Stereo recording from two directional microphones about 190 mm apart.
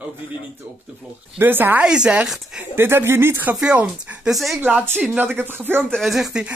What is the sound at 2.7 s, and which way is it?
Speech, 10° right (ahead or behind).